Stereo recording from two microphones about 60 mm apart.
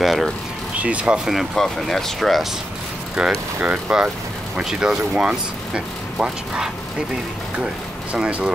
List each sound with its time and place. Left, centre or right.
0.0 s vehicle: centre
0.7 s speech: right
1.2 s speech: centre
3.2 s speech: centre